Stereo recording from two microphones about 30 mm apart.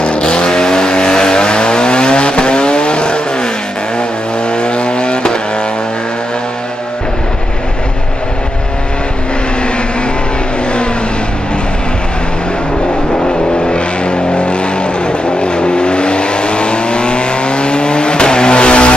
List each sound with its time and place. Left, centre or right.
0.0 s vehicle: left
4.6 s vehicle: left
13.7 s vehicle: left